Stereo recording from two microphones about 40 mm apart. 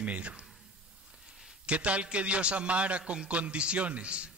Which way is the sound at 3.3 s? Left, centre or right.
Right.